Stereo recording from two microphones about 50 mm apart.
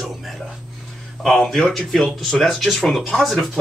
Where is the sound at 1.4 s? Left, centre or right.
Centre.